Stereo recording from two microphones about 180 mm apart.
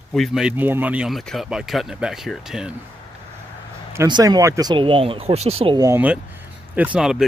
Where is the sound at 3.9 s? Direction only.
20° right (ahead or behind).